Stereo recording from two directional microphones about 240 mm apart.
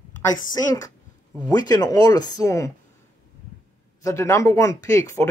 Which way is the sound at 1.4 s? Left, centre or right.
Centre.